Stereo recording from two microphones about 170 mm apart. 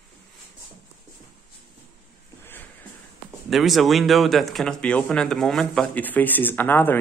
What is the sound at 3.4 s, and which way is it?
Speech, centre (ahead or behind).